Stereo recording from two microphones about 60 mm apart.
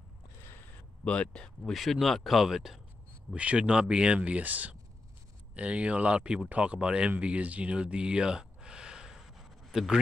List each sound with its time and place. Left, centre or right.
1.0 s speech: centre
1.7 s speech: centre
3.3 s speech: centre
7.1 s a sound: right